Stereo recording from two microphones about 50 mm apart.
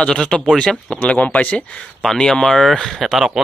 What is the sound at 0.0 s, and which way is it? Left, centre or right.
Speech, centre.